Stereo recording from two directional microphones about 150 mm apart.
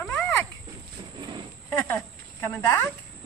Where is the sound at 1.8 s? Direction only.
15° left (ahead or behind).